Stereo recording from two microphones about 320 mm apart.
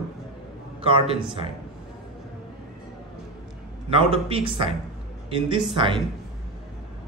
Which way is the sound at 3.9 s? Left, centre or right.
Centre.